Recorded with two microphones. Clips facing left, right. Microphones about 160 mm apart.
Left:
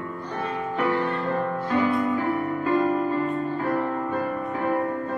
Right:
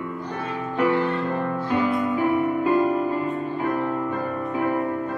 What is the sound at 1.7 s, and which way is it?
Music, 15° right (ahead or behind).